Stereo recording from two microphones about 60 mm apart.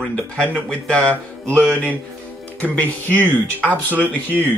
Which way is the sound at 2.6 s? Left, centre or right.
Left.